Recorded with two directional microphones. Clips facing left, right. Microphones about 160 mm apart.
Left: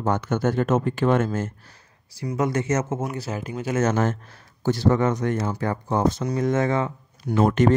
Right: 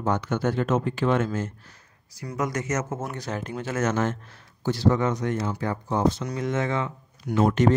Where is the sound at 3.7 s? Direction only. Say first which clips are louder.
Left 3 dB; 35° left (ahead or behind).